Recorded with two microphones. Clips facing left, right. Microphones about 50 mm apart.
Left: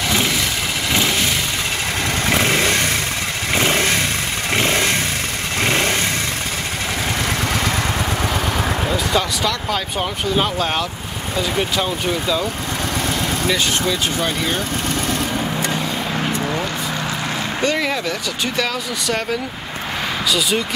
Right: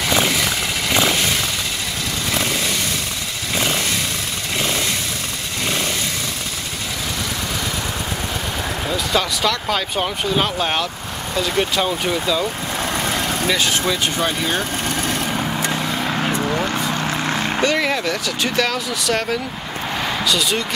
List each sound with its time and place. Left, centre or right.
2.2 s motorcycle: left
8.8 s speech: centre
11.3 s speech: centre
13.5 s speech: centre
17.6 s speech: centre
20.2 s speech: centre